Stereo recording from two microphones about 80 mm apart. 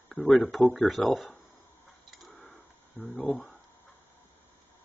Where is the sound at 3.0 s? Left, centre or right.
Left.